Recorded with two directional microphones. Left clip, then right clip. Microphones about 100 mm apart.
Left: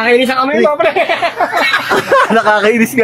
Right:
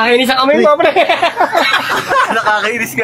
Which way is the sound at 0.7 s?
45° right (ahead or behind).